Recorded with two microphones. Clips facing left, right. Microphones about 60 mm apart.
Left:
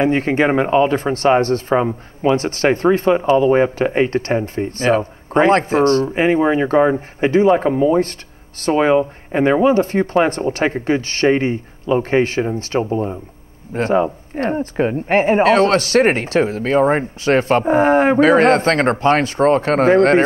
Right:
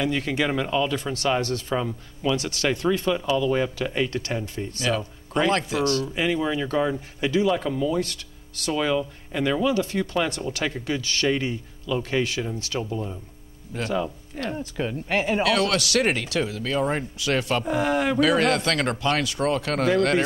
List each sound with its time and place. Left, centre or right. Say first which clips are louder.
0.0 s speech: left 9 dB; left